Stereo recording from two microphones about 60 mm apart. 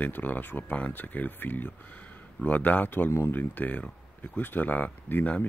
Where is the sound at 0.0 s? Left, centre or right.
Left.